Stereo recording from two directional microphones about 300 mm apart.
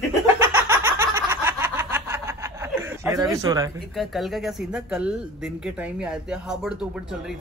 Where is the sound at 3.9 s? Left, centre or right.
Centre.